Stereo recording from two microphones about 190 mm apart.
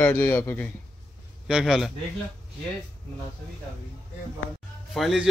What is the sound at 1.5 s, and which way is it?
Speech, centre (ahead or behind).